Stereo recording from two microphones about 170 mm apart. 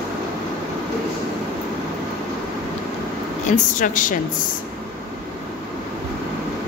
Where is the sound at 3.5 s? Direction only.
50° left (ahead or behind).